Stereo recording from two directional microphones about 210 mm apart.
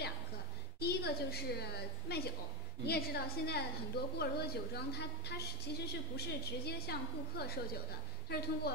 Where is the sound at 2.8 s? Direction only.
50° left (ahead or behind).